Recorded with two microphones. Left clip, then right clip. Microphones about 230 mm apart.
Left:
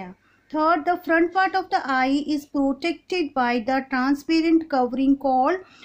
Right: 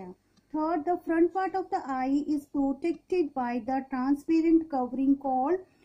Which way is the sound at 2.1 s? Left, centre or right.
Left.